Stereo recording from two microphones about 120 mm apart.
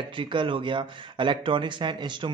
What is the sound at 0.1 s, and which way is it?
Speech, 45° right (ahead or behind).